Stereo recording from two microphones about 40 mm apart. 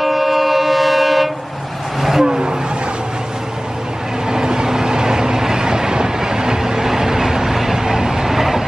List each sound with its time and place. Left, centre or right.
0.0 s vehicle: centre
2.2 s vehicle: centre
4.3 s vehicle: centre